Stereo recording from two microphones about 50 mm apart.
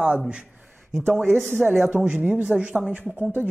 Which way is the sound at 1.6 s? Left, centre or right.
Centre.